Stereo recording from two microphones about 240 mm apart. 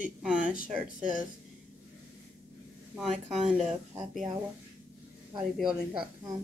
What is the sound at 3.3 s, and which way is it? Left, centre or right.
Speech, centre.